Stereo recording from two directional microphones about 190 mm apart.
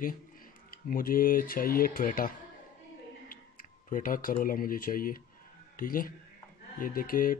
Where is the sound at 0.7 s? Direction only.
50° left (ahead or behind).